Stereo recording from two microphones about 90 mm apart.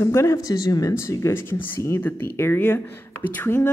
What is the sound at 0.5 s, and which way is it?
Speech, 45° left (ahead or behind).